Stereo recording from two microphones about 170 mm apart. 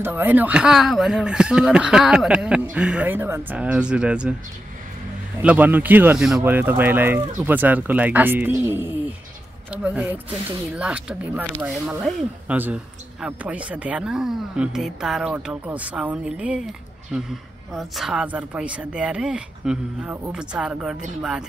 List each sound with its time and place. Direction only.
0.0 s speech: 10° right (ahead or behind)
5.4 s speech: 10° right (ahead or behind)